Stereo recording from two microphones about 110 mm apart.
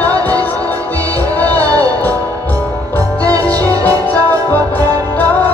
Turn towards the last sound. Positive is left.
turn(degrees=-35)  # may be behind; listen again after turning